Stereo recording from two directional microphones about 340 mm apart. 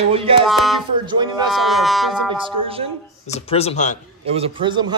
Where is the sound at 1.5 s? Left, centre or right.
Centre.